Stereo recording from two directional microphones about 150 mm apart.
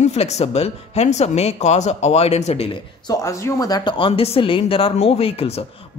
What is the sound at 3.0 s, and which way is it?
Speech, 20° left (ahead or behind).